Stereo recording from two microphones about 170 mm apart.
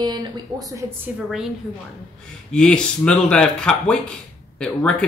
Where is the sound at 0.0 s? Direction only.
25° right (ahead or behind).